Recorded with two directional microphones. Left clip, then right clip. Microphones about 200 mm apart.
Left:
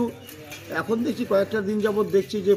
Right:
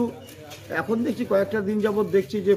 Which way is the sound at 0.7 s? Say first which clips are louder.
Even; centre (ahead or behind).